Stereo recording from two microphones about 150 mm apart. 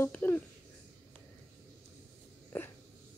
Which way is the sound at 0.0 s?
10° left (ahead or behind).